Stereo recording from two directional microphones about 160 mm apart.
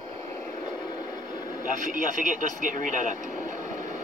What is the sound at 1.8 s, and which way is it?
Speech, 55° right (ahead or behind).